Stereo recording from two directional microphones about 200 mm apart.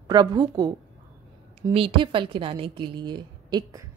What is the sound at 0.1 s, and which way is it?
A woman's voice, 20° right (ahead or behind).